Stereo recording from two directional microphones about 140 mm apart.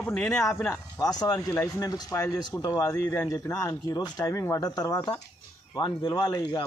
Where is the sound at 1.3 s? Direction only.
15° left (ahead or behind).